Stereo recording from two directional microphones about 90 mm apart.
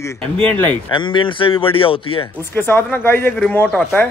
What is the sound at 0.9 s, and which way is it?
Speech, 65° left (ahead or behind).